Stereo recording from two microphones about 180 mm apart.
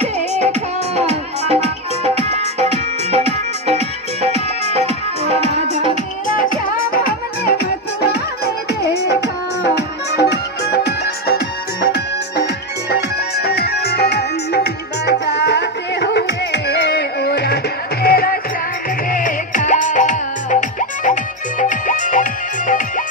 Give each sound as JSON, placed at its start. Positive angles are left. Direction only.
{"t": 0.4, "sound": "music", "side_deg": -35}
{"t": 6.9, "sound": "music", "side_deg": 55}
{"t": 8.8, "sound": "music", "side_deg": 65}